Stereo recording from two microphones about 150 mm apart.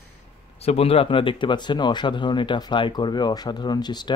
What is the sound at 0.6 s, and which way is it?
Speech, 40° left (ahead or behind).